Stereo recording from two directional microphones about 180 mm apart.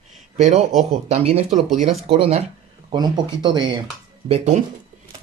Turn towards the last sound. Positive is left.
turn(degrees=-40)  # may be behind; listen again after turning